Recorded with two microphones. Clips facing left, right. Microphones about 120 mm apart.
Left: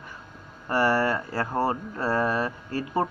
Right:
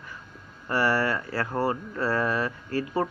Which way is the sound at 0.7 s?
15° left (ahead or behind).